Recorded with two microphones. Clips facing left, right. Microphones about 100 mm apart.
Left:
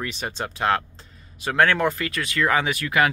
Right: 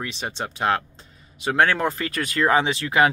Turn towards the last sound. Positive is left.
turn(degrees=-25)  # may be behind; listen again after turning